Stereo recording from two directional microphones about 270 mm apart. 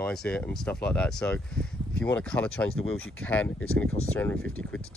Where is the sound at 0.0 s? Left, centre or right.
Centre.